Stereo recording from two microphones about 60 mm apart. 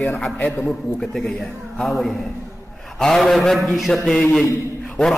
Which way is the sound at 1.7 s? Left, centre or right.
Centre.